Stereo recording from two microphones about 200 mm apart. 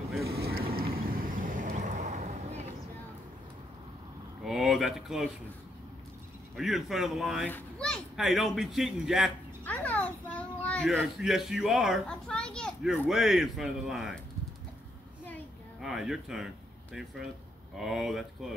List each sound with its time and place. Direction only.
0.2 s vehicle: 50° right (ahead or behind)
4.4 s a sound: centre (ahead or behind)
6.5 s speech: centre (ahead or behind)
7.4 s a sound: 5° left (ahead or behind)
11.0 s a child's voice: centre (ahead or behind)
15.8 s speech: centre (ahead or behind)
17.7 s speech: centre (ahead or behind)